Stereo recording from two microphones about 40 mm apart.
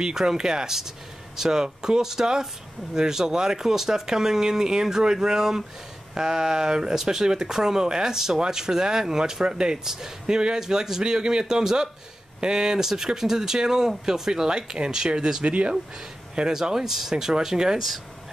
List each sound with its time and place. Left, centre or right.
0.0 s speech: centre
15.4 s speech: right
16.6 s speech: centre